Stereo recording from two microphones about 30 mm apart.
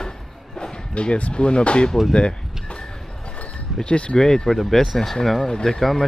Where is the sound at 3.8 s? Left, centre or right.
Left.